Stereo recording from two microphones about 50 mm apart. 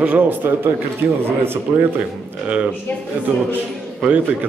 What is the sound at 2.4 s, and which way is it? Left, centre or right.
Speech, right.